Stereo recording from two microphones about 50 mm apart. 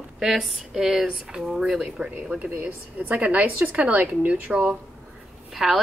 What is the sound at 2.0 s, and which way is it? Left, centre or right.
A woman's voice, right.